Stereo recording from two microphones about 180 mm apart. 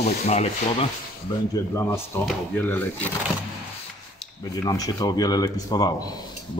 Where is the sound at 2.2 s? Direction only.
10° left (ahead or behind).